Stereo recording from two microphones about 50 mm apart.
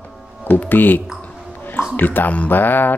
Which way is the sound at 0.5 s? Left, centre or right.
Left.